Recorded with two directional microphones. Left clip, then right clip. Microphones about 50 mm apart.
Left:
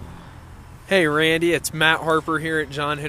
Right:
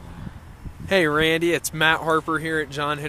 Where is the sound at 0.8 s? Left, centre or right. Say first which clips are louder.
Left 1 dB; centre.